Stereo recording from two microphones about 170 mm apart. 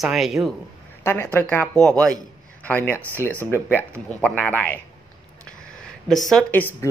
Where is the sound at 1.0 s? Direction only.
15° left (ahead or behind).